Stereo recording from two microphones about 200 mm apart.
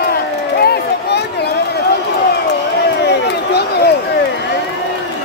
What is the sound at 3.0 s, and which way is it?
Run, 55° left (ahead or behind).